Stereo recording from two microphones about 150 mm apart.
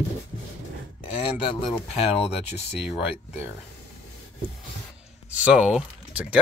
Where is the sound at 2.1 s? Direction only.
40° left (ahead or behind).